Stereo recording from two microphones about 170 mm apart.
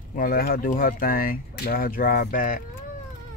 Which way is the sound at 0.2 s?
60° left (ahead or behind).